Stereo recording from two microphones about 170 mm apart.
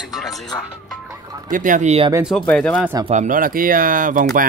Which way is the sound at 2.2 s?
Centre (ahead or behind).